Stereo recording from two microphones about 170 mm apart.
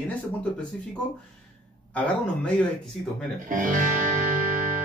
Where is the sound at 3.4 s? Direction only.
50° right (ahead or behind).